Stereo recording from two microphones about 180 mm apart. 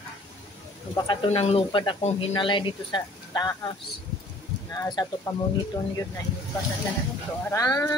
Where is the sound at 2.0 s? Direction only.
35° left (ahead or behind); by 5.3 s 20° left (ahead or behind).